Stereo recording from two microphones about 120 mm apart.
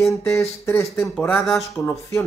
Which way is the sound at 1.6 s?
25° left (ahead or behind).